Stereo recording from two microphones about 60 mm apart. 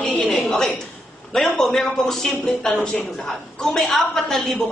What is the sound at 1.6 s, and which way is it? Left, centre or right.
A woman's voice, centre.